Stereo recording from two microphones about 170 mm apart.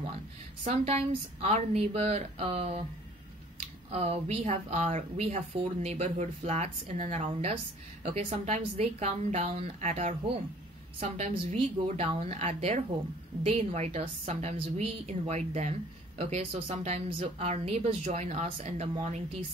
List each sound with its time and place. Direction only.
0.7 s speech: 35° right (ahead or behind)
3.9 s speech: 35° right (ahead or behind)